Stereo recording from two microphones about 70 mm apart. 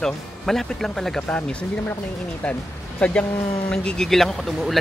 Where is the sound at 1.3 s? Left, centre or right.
Centre.